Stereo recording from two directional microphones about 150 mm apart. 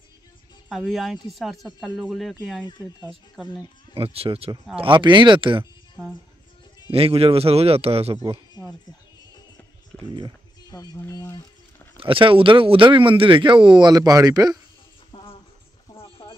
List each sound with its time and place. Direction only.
0.7 s speech: centre (ahead or behind)
3.9 s speech: 40° right (ahead or behind)
6.9 s speech: 40° right (ahead or behind)
9.9 s a sound: 10° left (ahead or behind)
10.7 s speech: 25° left (ahead or behind)
12.0 s speech: 35° right (ahead or behind)
15.1 s a sound: 30° left (ahead or behind)